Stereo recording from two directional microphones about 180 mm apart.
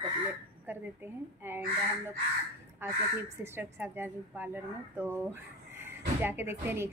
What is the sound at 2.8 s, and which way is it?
A woman's voice, 15° right (ahead or behind).